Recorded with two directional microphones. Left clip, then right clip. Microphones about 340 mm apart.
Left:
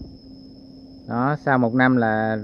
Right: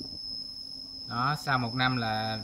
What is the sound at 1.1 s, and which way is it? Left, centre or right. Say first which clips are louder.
Speech: left 7 dB; centre.